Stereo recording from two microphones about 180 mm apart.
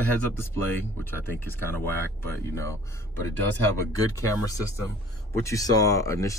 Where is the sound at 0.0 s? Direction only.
10° left (ahead or behind).